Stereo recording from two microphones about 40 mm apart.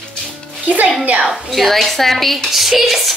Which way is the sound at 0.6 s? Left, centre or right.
Right.